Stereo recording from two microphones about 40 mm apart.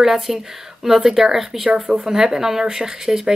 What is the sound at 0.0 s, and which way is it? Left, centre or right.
Speech, centre.